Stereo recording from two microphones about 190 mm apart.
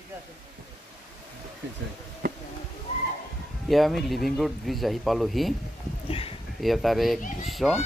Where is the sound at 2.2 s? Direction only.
50° right (ahead or behind).